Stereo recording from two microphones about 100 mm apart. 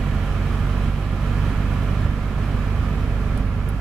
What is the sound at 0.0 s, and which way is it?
Vehicle, 5° right (ahead or behind).